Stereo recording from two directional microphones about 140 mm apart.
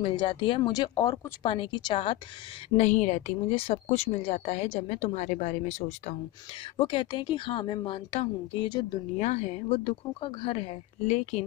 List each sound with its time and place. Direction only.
0.0 s a woman's voice: 35° left (ahead or behind)
2.8 s a woman's voice: 60° left (ahead or behind)
6.8 s a woman's voice: 35° left (ahead or behind)
9.2 s a woman's voice: 50° left (ahead or behind)